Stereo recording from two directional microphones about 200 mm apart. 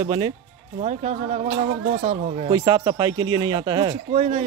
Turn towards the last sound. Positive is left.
turn(degrees=-35)  # may be behind; listen again after turning